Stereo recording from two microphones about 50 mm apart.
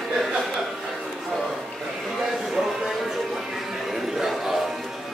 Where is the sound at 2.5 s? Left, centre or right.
Centre.